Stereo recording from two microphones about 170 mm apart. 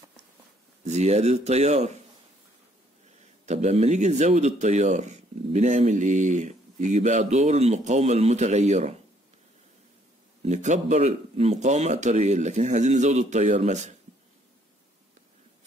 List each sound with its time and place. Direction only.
0.8 s speech: 40° right (ahead or behind)
3.4 s speech: 40° right (ahead or behind)
10.4 s speech: 45° right (ahead or behind)